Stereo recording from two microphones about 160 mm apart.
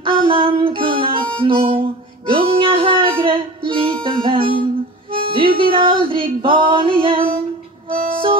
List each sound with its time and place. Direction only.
0.0 s music: 30° right (ahead or behind)
1.4 s harmonica: 35° right (ahead or behind)
2.2 s music: 35° right (ahead or behind)
5.7 s female singing: 30° right (ahead or behind)
7.9 s music: 60° right (ahead or behind)